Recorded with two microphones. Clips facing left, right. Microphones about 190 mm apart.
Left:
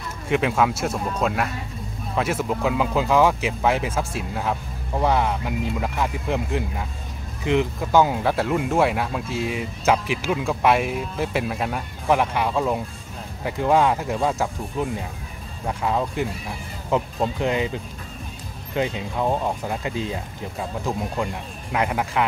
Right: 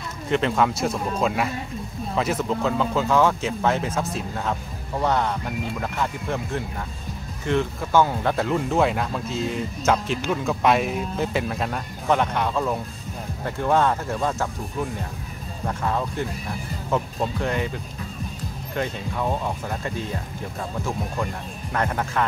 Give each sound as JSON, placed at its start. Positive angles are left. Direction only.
{"t": 0.3, "sound": "speech", "side_deg": 5}
{"t": 8.2, "sound": "speech", "side_deg": 5}
{"t": 15.6, "sound": "speech", "side_deg": 10}
{"t": 18.8, "sound": "speech", "side_deg": 20}
{"t": 21.7, "sound": "speech", "side_deg": 10}